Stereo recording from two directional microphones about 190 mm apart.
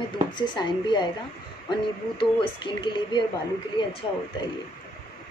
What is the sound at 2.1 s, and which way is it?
Speech, 25° left (ahead or behind).